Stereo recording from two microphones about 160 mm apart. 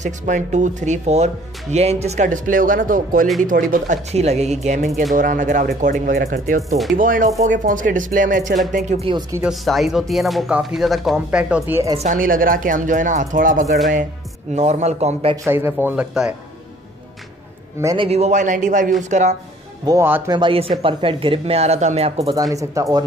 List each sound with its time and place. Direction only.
0.0 s speech: 50° right (ahead or behind)
8.7 s speech: 45° right (ahead or behind)
9.4 s speech: centre (ahead or behind)
12.0 s speech: 55° right (ahead or behind)
15.4 s speech: 15° right (ahead or behind)
17.9 s speech: 40° right (ahead or behind)
19.9 s speech: 15° right (ahead or behind)
20.2 s speech: 30° right (ahead or behind)
22.3 s speech: 20° right (ahead or behind)